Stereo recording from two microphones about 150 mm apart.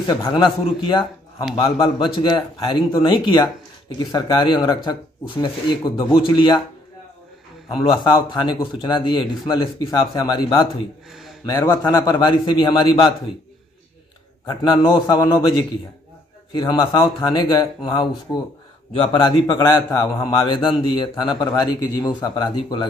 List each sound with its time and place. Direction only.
0.0 s a man's voice: 30° left (ahead or behind)
5.9 s a man's voice: 35° left (ahead or behind)
7.6 s a man's voice: 35° left (ahead or behind)
11.1 s a sound: centre (ahead or behind)
11.4 s a man's voice: 25° left (ahead or behind)
14.4 s a man's voice: 30° left (ahead or behind)